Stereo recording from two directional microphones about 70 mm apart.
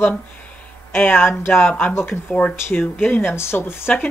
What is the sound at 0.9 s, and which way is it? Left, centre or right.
Speech, left.